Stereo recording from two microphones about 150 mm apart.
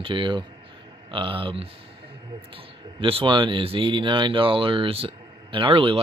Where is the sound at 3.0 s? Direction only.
35° right (ahead or behind).